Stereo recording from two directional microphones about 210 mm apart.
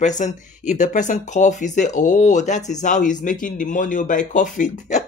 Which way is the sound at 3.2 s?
40° left (ahead or behind).